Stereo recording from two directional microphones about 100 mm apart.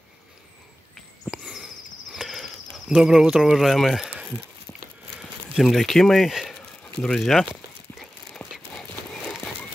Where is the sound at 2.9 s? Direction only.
5° right (ahead or behind).